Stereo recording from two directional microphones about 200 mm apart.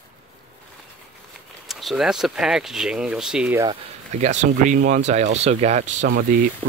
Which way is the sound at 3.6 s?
35° right (ahead or behind).